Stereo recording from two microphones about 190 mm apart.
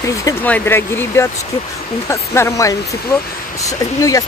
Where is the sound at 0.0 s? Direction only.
15° left (ahead or behind).